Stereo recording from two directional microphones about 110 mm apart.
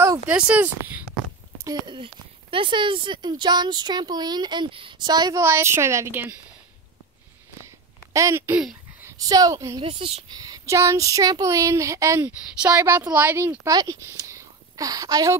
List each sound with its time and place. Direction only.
0.3 s speech: 10° right (ahead or behind)
2.5 s speech: 50° right (ahead or behind)
5.4 s speech: 25° right (ahead or behind)
8.1 s speech: 30° right (ahead or behind)
9.8 s a woman's voice: 55° right (ahead or behind)
10.3 s speech: 35° right (ahead or behind); by 13.6 s 20° right (ahead or behind)
13.7 s speech: 35° right (ahead or behind)